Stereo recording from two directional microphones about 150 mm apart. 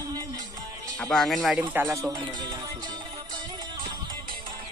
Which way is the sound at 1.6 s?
15° right (ahead or behind).